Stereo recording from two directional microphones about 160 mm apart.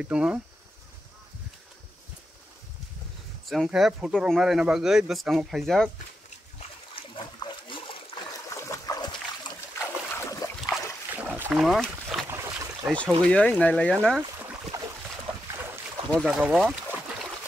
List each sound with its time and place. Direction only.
0.0 s speech: 5° right (ahead or behind)
3.4 s speech: centre (ahead or behind)
7.0 s a sound: 35° left (ahead or behind)
7.6 s splash: 30° left (ahead or behind)
8.5 s boat: 20° left (ahead or behind)
11.1 s boat: 10° right (ahead or behind)
11.5 s a sound: centre (ahead or behind)
12.3 s boat: 15° right (ahead or behind)
12.9 s speech: 10° left (ahead or behind)
14.7 s boat: 20° right (ahead or behind)
16.1 s speech: 5° left (ahead or behind)